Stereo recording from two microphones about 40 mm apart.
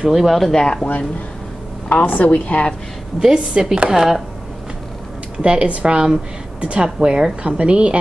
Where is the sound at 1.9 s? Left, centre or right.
Left.